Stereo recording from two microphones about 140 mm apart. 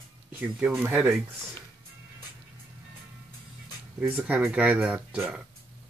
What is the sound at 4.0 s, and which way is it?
Speech, 10° right (ahead or behind).